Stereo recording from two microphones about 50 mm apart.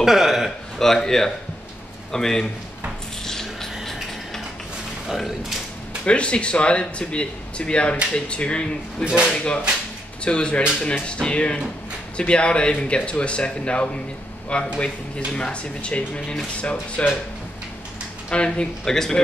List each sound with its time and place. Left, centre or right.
0.0 s speech: centre
0.7 s speech: centre
3.3 s vehicle: centre
6.0 s speech: left
9.0 s speech: right
10.2 s speech: left
18.3 s speech: centre